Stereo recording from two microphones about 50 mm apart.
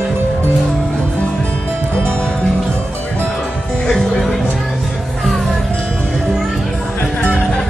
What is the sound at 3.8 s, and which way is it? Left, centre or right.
Music, centre.